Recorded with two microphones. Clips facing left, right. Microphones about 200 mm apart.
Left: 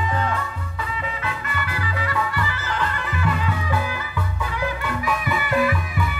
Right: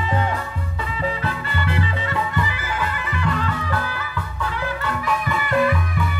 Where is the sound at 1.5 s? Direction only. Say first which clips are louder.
Right 4 dB; 25° right (ahead or behind).